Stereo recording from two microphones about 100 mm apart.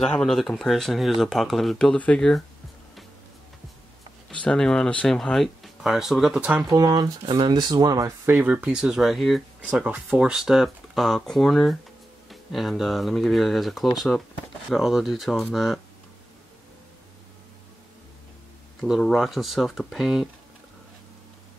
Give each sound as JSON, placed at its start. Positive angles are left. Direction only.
{"t": 0.0, "sound": "speech", "side_deg": 5}
{"t": 4.3, "sound": "speech", "side_deg": 10}
{"t": 6.7, "sound": "speech", "side_deg": -40}
{"t": 8.3, "sound": "speech", "side_deg": -20}
{"t": 18.8, "sound": "speech", "side_deg": 5}